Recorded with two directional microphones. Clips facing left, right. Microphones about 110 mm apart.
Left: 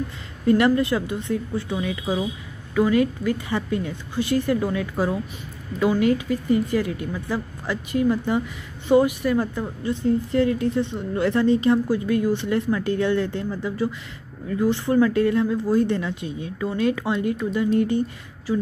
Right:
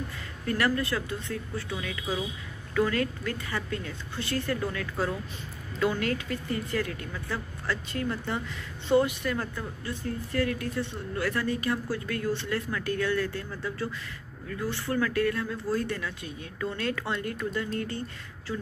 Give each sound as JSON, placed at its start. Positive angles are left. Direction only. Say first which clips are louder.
{"t": 0.5, "sound": "a woman's voice", "louder": "left 9 dB", "side_deg": 20}